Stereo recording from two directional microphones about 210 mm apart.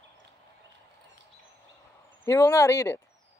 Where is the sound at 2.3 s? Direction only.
15° left (ahead or behind).